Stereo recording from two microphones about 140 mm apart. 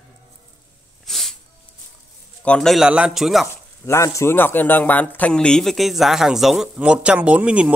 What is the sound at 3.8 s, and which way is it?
Speech, 20° left (ahead or behind).